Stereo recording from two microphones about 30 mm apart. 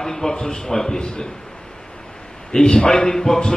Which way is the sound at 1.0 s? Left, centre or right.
Left.